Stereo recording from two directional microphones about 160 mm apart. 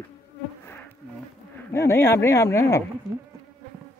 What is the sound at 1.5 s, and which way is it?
Speech, 15° left (ahead or behind).